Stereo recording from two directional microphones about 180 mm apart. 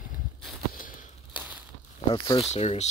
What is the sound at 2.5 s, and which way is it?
Speech, 35° left (ahead or behind).